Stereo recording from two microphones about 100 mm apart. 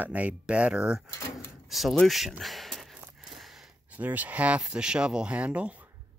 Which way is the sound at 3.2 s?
5° right (ahead or behind).